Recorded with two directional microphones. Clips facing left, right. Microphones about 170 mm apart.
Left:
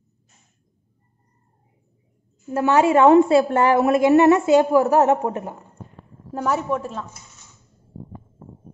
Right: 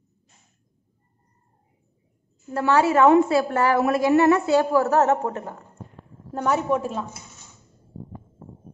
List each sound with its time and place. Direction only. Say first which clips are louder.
2.5 s a woman's voice: left 3 dB; 15° left (ahead or behind)
6.3 s a man's voice: right 1 dB; centre (ahead or behind)